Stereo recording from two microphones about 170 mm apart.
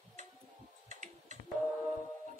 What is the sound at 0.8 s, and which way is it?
Computer keyboard, 45° right (ahead or behind).